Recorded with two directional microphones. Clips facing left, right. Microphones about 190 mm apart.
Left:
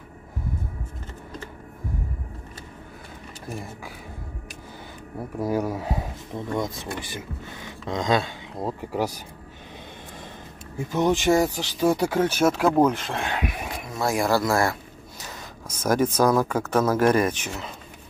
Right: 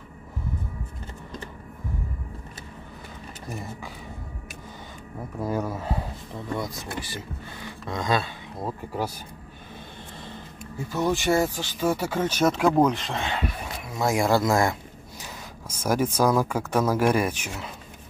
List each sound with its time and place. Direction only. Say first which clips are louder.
5.4 s speech: left 3 dB; 10° left (ahead or behind)
7.8 s speech: left 3 dB; 15° left (ahead or behind)
10.9 s speech: left 3 dB; 20° left (ahead or behind)
13.8 s speech: right 1 dB; 15° right (ahead or behind)